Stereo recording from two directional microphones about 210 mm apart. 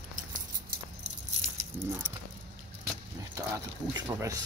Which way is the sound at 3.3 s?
15° right (ahead or behind).